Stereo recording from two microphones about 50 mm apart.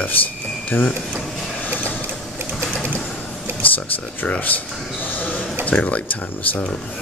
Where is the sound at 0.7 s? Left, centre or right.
Left.